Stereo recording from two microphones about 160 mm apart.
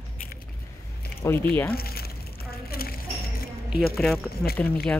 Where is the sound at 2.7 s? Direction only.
70° left (ahead or behind).